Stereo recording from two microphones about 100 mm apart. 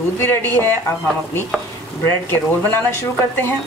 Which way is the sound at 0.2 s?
20° left (ahead or behind).